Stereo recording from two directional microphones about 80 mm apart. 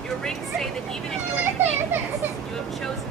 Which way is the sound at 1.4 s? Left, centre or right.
Right.